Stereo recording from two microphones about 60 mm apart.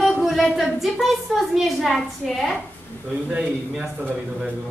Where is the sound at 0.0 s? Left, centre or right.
Centre.